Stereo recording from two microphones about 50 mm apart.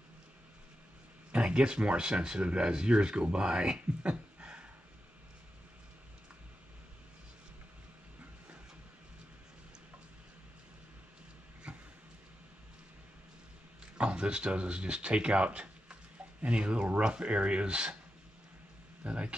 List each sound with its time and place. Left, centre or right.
1.3 s speech: centre
11.7 s a sound: right
13.9 s speech: right
19.0 s speech: right